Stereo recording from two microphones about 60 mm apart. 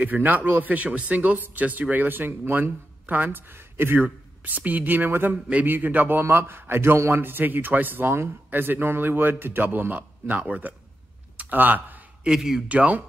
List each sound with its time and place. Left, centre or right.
0.0 s speech: right
12.3 s speech: centre
12.6 s speech: right